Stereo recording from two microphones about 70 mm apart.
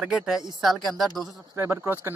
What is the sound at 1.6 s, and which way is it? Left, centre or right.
Speech, right.